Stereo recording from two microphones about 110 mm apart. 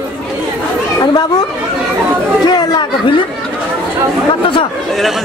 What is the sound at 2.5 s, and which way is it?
Speech, 40° left (ahead or behind).